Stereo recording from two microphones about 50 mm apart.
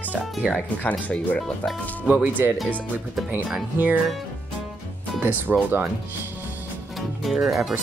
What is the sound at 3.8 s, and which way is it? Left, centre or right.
Speech, right.